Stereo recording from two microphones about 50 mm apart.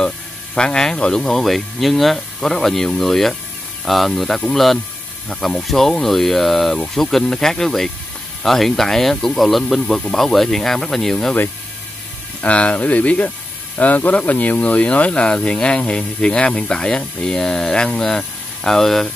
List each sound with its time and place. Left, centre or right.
0.6 s speech: centre
1.3 s speech: centre
12.4 s speech: left; by 19.0 s centre